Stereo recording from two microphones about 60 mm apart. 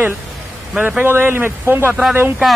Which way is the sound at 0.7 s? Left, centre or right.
Right.